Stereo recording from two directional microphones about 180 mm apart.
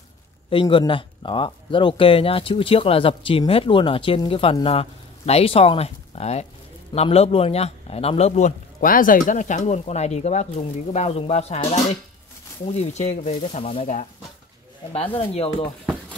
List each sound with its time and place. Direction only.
0.5 s speech: 30° left (ahead or behind)
15.6 s speech: centre (ahead or behind)